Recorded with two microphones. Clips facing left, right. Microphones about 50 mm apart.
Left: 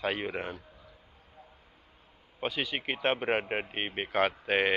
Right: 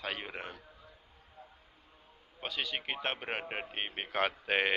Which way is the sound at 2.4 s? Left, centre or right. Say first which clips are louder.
Left 4 dB; centre.